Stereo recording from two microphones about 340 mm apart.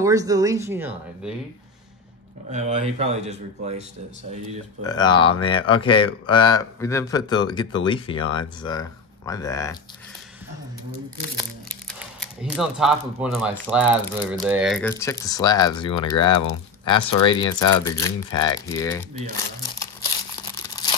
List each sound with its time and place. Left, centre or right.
0.0 s speech: centre
2.5 s speech: centre
4.8 s speech: centre
11.7 s speech: centre